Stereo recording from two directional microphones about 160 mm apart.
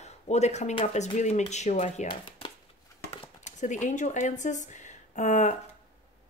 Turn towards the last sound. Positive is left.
turn(degrees=45)  # may be behind; listen again after turning